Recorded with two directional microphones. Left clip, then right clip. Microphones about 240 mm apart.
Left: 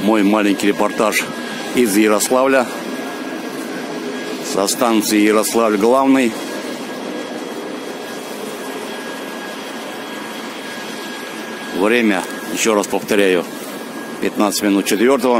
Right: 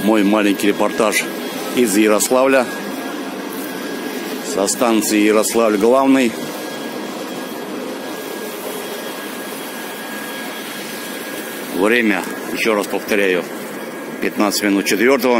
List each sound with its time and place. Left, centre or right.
0.0 s speech: centre
4.6 s speech: centre
11.8 s speech: centre
12.6 s speech: left